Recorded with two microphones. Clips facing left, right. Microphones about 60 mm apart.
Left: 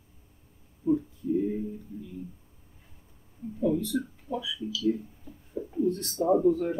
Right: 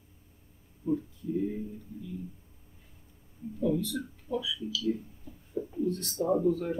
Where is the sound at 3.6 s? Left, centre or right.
Centre.